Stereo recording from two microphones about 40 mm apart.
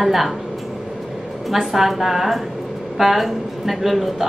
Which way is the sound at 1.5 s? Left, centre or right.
Centre.